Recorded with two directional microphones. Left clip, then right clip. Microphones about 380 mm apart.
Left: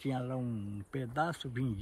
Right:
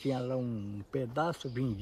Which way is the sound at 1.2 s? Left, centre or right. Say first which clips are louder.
Even; left.